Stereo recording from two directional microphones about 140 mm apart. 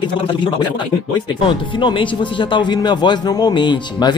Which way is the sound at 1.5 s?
35° left (ahead or behind).